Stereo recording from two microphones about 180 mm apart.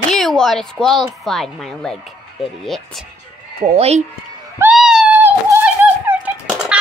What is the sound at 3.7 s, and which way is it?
Speech, 35° right (ahead or behind).